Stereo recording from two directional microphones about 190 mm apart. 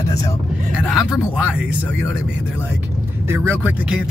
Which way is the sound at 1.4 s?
5° right (ahead or behind).